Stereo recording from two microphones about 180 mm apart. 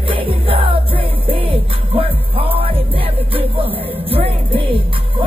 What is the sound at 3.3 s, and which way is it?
Music, 30° right (ahead or behind).